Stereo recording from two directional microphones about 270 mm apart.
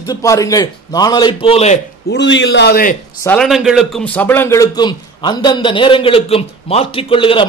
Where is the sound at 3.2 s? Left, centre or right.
Centre.